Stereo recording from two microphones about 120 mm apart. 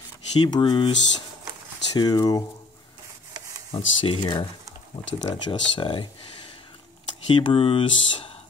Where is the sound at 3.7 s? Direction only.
45° left (ahead or behind).